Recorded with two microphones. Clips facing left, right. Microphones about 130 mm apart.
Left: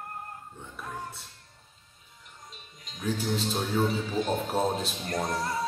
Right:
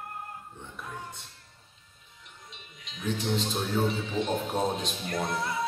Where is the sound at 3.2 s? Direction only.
5° left (ahead or behind).